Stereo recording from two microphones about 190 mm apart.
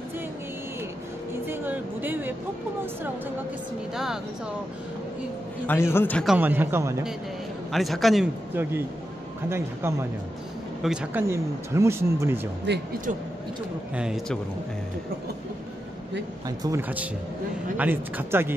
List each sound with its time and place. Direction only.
1.5 s a sound: 10° right (ahead or behind)
3.9 s a man's voice: centre (ahead or behind)
5.7 s a man's voice: 15° left (ahead or behind)
6.3 s speech: 10° right (ahead or behind)
7.7 s a man's voice: centre (ahead or behind)
9.5 s speech: 15° right (ahead or behind)
12.7 s speech: 65° right (ahead or behind)
13.9 s a man's voice: 5° right (ahead or behind)
16.4 s speech: 20° right (ahead or behind)